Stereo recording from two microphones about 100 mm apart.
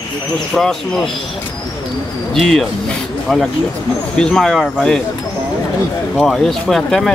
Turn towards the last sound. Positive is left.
turn(degrees=5)  # may be behind; listen again after turning